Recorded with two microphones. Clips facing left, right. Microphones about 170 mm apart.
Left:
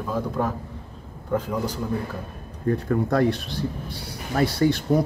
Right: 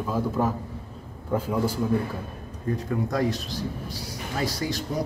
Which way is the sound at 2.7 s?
60° left (ahead or behind).